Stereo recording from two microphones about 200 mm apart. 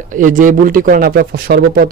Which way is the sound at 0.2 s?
40° right (ahead or behind).